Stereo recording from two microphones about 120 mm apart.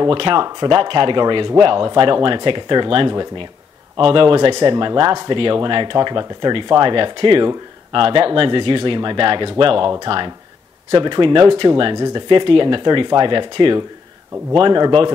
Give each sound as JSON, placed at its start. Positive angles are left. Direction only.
{"t": 0.0, "sound": "speech", "side_deg": -45}
{"t": 4.5, "sound": "speech", "side_deg": -35}